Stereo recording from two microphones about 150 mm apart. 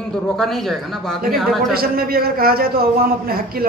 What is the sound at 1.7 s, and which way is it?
A man's voice, 85° right.